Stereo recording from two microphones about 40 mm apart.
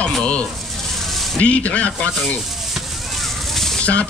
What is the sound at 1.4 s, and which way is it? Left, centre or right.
Speech, left.